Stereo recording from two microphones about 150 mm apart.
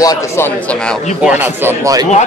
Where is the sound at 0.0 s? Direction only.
25° left (ahead or behind).